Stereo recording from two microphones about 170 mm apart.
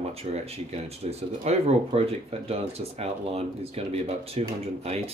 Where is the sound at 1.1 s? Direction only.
35° right (ahead or behind).